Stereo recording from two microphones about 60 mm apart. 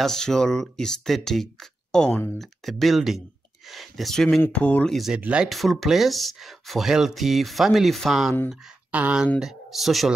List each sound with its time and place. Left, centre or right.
0.0 s speech: centre
2.0 s speech: left
2.3 s speech: centre
4.5 s speech: left
5.1 s speech: centre
5.5 s speech: centre
8.9 s speech: right
9.4 s speech: centre